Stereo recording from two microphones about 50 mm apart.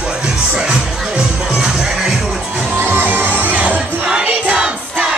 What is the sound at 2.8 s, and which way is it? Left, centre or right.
Music, right.